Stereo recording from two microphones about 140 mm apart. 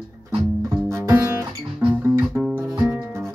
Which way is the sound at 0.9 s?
20° right (ahead or behind).